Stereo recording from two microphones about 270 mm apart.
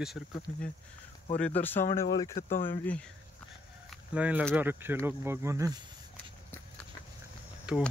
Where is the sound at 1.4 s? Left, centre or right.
Centre.